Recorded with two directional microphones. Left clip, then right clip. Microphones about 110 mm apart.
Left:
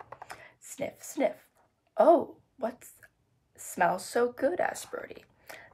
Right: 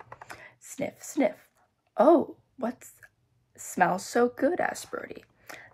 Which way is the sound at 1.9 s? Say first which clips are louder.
Right 1 dB; 30° right (ahead or behind).